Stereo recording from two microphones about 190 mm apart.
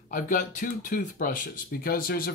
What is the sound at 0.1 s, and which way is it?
Speech, 45° left (ahead or behind).